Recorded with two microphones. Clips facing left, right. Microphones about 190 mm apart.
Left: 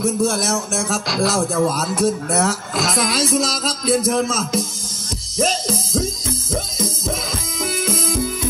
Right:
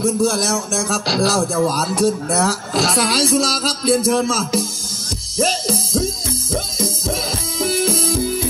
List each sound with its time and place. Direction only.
0.0 s speech: 30° right (ahead or behind)
7.6 s music: 30° right (ahead or behind)